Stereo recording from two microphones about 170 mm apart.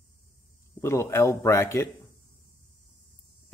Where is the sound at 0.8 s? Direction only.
15° left (ahead or behind).